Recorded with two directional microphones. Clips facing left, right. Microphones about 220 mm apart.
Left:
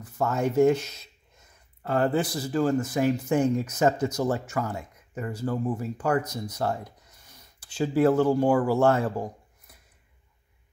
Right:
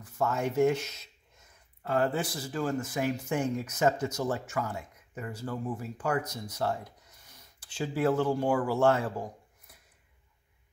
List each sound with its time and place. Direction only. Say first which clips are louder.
0.0 s speech: left 4 dB; 40° left (ahead or behind)